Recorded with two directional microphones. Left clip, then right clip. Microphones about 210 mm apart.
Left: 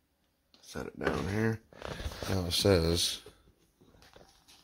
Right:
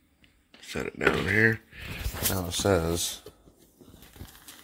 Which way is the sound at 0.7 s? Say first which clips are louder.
Right 8 dB; 5° left (ahead or behind).